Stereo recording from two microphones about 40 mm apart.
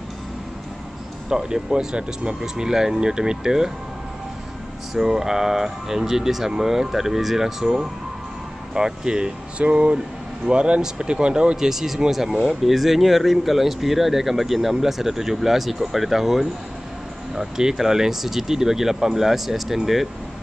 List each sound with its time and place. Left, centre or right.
1.3 s speech: centre
4.9 s speech: centre
11.5 s speech: centre